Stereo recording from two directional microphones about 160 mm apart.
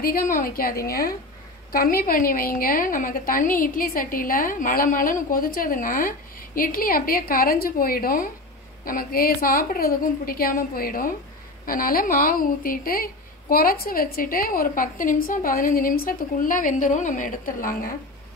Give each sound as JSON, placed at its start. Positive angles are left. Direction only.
{"t": 0.0, "sound": "a woman's voice", "side_deg": 65}